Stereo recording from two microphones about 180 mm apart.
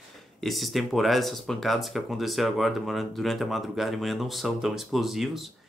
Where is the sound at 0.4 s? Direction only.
Centre (ahead or behind).